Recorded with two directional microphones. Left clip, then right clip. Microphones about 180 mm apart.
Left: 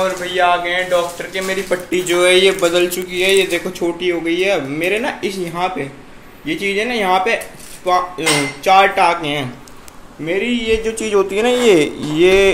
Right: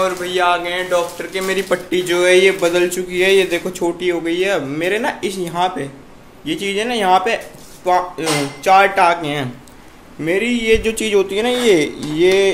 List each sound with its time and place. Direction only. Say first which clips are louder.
0.0 s speech: left 1 dB; 20° right (ahead or behind)
10.2 s a sound: right 1 dB; 35° right (ahead or behind)
11.0 s speech: even; 15° right (ahead or behind)
11.2 s a man's voice: left 2 dB; centre (ahead or behind)